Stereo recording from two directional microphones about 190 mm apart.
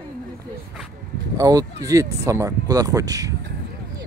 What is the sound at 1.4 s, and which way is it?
Speech, 20° right (ahead or behind).